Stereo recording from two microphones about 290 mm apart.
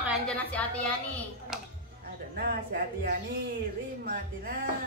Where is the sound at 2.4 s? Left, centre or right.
Right.